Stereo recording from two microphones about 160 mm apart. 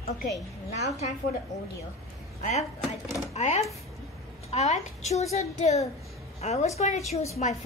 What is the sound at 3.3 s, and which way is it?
A woman's voice, 45° left (ahead or behind).